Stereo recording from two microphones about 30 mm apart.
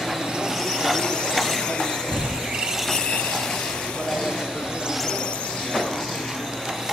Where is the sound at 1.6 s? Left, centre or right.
Left.